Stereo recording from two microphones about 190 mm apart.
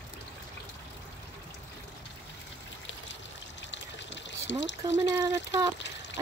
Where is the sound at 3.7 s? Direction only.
70° left (ahead or behind).